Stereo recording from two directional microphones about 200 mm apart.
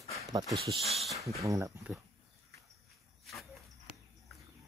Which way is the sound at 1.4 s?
15° right (ahead or behind).